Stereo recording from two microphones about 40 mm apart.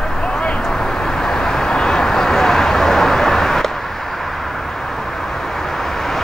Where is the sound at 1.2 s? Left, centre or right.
Centre.